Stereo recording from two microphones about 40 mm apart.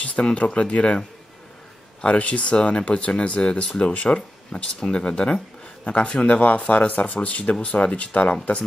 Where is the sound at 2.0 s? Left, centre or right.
Left.